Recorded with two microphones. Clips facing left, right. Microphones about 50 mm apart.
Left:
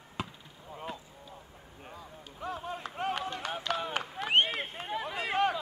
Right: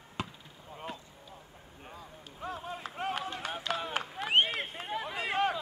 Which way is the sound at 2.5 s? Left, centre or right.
Left.